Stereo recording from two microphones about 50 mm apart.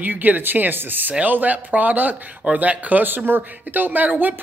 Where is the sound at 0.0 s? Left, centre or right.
Right.